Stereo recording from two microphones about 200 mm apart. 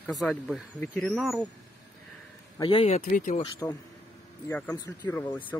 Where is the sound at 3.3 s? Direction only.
20° left (ahead or behind).